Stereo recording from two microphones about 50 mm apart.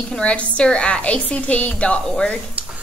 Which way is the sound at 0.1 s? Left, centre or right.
Left.